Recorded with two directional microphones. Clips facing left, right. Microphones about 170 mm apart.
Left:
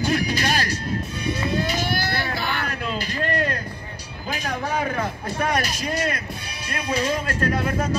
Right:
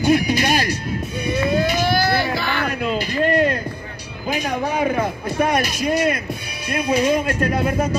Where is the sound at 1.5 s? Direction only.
90° right.